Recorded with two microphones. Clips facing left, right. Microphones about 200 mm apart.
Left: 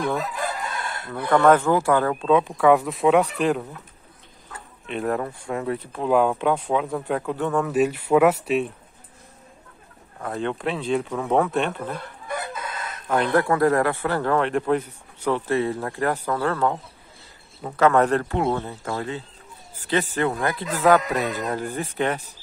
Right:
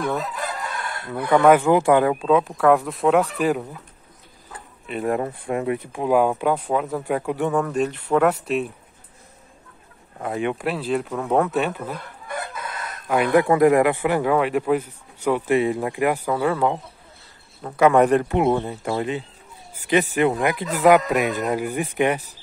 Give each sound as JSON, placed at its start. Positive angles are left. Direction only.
{"t": 0.0, "sound": "speech", "side_deg": 0}
{"t": 2.1, "sound": "speech", "side_deg": 0}
{"t": 4.8, "sound": "speech", "side_deg": -5}
{"t": 5.5, "sound": "speech", "side_deg": -15}
{"t": 7.6, "sound": "speech", "side_deg": 5}
{"t": 10.2, "sound": "speech", "side_deg": -15}
{"t": 13.1, "sound": "speech", "side_deg": -10}
{"t": 17.7, "sound": "speech", "side_deg": -15}